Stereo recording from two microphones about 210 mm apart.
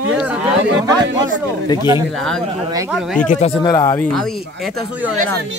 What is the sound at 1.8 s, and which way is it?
Speech, 15° right (ahead or behind).